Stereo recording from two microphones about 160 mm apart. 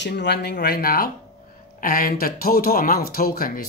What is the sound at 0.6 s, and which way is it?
A woman's voice, 70° left (ahead or behind).